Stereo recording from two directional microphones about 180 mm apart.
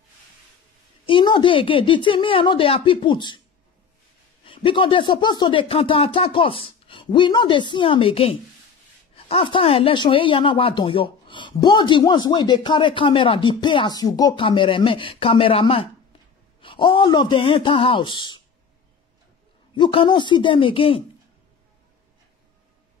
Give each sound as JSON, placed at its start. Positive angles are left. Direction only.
{"t": 1.0, "sound": "a woman's voice", "side_deg": 25}
{"t": 4.5, "sound": "a woman's voice", "side_deg": 30}
{"t": 19.7, "sound": "a woman's voice", "side_deg": 25}